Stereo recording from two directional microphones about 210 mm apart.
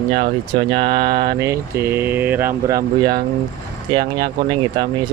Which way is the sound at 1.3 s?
15° right (ahead or behind).